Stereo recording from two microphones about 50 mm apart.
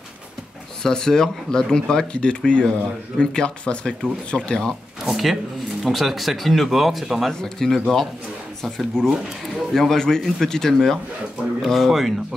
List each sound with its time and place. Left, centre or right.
0.8 s speech: centre
5.0 s speech: centre